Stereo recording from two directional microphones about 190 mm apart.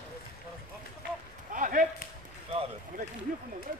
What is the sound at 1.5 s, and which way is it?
Speech, 45° right (ahead or behind).